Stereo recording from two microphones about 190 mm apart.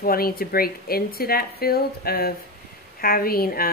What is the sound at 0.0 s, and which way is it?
Speech, 50° left (ahead or behind).